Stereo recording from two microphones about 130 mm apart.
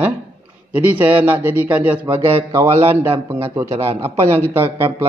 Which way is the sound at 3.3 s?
20° right (ahead or behind).